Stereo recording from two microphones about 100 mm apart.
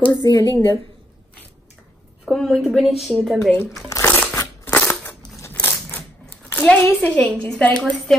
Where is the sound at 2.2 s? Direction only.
5° right (ahead or behind).